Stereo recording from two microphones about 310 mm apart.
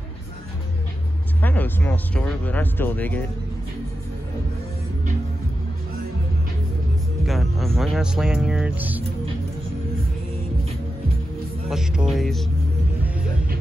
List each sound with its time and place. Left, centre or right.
1.4 s speech: centre
7.2 s speech: centre
11.7 s speech: centre